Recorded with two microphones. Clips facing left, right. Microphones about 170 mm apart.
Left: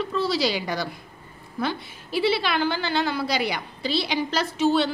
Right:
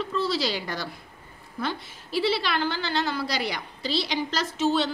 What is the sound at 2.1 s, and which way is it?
Speech, 60° left (ahead or behind).